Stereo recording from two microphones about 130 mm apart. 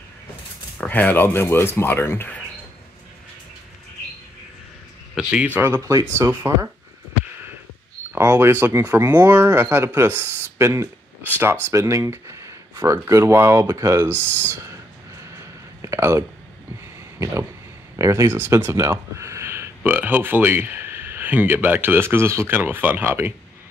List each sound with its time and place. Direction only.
0.7 s speech: 10° left (ahead or behind)
5.1 s speech: 10° right (ahead or behind)
8.1 s speech: 20° right (ahead or behind)
14.1 s speech: 10° left (ahead or behind)
15.3 s a sound: 20° right (ahead or behind)
17.2 s speech: 20° right (ahead or behind)